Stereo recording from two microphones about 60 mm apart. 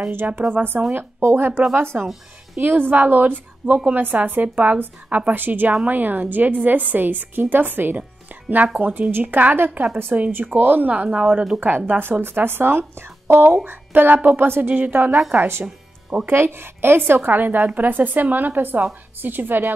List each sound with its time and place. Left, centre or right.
0.3 s a woman's voice: right
1.9 s a woman's voice: right
2.6 s a woman's voice: right
15.1 s a woman's voice: centre
15.6 s music: centre
16.3 s a woman's voice: right